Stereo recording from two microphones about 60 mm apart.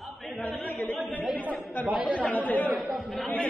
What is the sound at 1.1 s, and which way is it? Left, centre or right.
Chatter, left.